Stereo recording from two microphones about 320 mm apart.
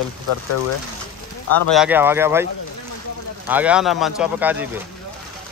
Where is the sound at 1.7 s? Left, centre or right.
Centre.